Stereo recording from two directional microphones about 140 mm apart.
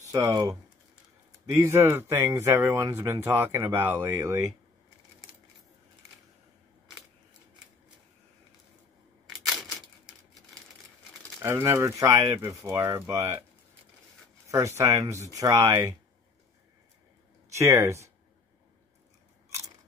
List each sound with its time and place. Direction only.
0.1 s speech: 25° right (ahead or behind)
1.6 s speech: 15° right (ahead or behind)
9.5 s crumpling: 5° right (ahead or behind)
11.4 s speech: 20° right (ahead or behind)
14.5 s speech: 20° right (ahead or behind)
17.6 s speech: 20° right (ahead or behind)